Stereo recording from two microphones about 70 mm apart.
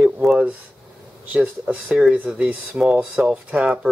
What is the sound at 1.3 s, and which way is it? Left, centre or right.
Speech, centre.